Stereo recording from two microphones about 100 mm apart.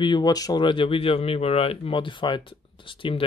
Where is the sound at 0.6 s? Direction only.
65° left (ahead or behind).